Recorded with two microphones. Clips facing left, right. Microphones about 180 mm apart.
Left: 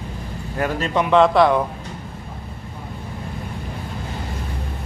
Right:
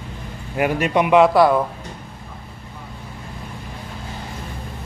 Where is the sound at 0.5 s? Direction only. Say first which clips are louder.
Right 3 dB; 15° right (ahead or behind).